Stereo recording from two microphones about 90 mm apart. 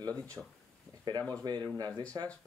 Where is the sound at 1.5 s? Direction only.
50° right (ahead or behind).